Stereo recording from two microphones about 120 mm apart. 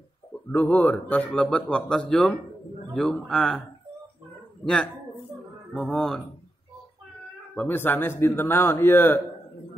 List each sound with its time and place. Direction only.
0.5 s a man's voice: 10° left (ahead or behind)
5.7 s a man's voice: 5° left (ahead or behind)
7.5 s speech: 15° left (ahead or behind)